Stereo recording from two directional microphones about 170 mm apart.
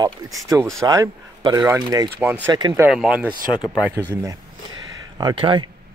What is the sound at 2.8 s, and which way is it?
Speech, 5° right (ahead or behind).